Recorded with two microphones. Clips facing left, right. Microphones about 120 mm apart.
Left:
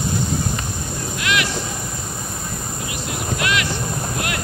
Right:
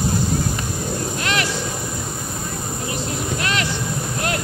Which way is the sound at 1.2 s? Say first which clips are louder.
Left 3 dB; 40° right (ahead or behind).